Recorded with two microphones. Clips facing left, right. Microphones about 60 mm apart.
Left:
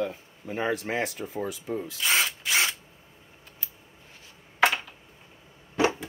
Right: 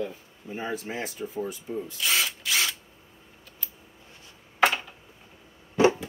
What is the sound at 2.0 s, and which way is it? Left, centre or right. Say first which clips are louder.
Drill: left 1 dB; left.